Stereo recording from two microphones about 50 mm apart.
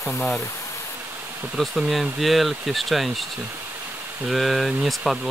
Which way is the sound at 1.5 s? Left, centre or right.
Centre.